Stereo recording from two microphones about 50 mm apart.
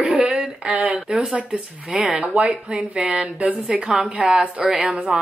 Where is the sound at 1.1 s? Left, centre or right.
Right.